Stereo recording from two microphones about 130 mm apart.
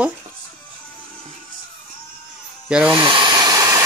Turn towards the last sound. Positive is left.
turn(degrees=-25)  # may be behind; listen again after turning